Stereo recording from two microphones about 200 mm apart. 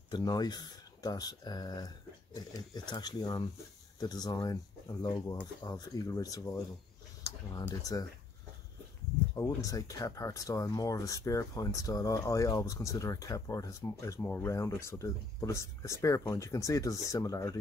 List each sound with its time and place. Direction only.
0.1 s speech: 20° left (ahead or behind)
9.3 s speech: 15° left (ahead or behind)